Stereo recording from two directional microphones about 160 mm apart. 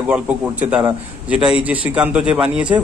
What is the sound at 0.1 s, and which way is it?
A man's voice, 10° right (ahead or behind).